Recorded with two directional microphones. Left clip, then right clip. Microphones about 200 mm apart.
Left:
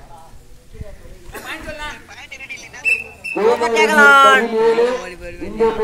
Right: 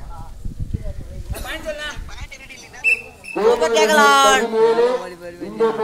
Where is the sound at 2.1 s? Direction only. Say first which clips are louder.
Left 5 dB; 55° right (ahead or behind).